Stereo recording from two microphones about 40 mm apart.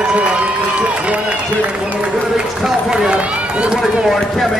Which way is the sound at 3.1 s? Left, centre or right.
Right.